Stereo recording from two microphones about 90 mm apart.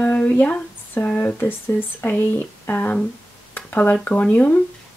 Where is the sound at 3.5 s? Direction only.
20° left (ahead or behind).